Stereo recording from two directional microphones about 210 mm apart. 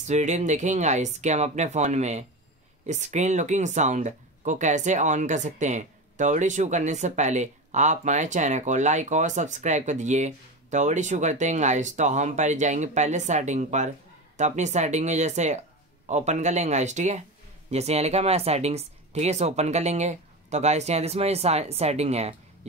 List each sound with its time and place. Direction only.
0.0 s speech: 35° right (ahead or behind)